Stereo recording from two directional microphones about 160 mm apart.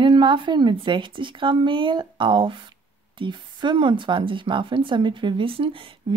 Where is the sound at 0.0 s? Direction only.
30° right (ahead or behind).